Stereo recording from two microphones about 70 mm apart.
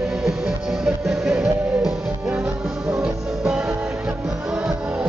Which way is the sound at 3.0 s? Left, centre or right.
Centre.